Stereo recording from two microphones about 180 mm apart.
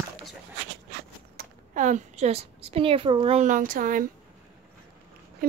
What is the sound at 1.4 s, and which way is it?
A woman's voice, 45° right (ahead or behind).